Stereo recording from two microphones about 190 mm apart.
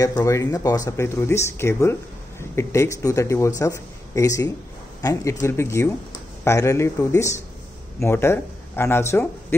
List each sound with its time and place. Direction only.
0.0 s speech: 15° left (ahead or behind)